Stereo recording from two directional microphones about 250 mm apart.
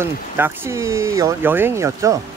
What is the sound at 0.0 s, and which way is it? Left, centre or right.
Speech, centre.